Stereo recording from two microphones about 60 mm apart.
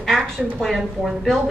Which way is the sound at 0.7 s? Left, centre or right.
Centre.